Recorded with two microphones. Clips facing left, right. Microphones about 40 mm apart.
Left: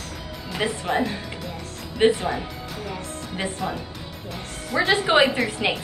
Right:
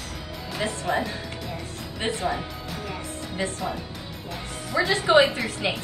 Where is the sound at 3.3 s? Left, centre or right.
Left.